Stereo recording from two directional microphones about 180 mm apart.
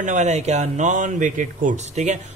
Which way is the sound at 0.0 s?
45° right (ahead or behind).